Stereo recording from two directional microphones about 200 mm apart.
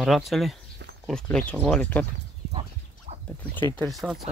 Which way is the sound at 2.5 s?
35° right (ahead or behind).